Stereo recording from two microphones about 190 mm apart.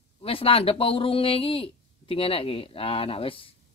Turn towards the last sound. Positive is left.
turn(degrees=30)  # may be behind; listen again after turning